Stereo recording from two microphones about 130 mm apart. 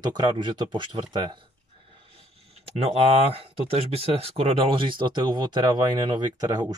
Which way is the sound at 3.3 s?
50° right (ahead or behind).